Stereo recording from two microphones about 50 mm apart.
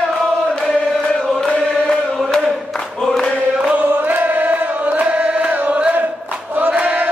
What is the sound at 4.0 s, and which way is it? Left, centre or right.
Chant, right.